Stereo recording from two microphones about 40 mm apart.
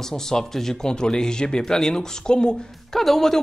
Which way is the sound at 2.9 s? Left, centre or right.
Centre.